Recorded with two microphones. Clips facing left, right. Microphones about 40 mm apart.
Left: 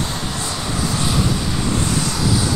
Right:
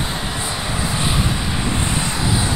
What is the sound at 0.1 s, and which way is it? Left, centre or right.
Vehicle, centre.